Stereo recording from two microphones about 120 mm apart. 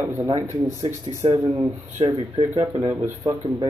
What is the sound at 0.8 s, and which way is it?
Speech, 65° right (ahead or behind).